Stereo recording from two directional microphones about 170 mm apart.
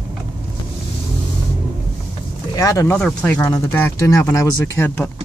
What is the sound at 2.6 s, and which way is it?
Speech, 20° left (ahead or behind).